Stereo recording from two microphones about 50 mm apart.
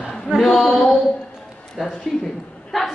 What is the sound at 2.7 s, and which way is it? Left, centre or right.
Speech, centre.